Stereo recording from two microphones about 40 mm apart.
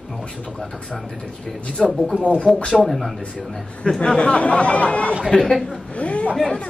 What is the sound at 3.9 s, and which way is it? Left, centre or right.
Speech, left.